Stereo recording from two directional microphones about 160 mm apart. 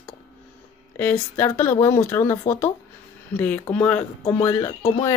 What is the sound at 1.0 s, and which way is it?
Speech, 10° left (ahead or behind).